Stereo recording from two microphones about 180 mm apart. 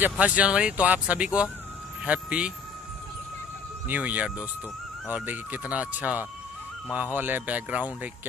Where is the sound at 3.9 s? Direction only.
10° right (ahead or behind).